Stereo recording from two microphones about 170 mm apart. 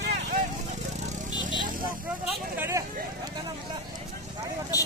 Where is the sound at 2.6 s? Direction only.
15° right (ahead or behind).